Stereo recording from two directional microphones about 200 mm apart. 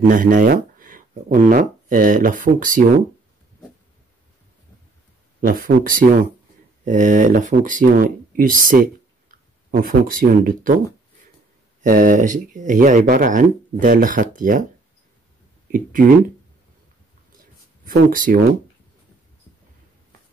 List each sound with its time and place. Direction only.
0.1 s speech: 40° right (ahead or behind)
5.4 s speech: 45° right (ahead or behind)
11.8 s speech: 40° right (ahead or behind)
15.7 s speech: 45° right (ahead or behind)
17.4 s a sound: 45° right (ahead or behind)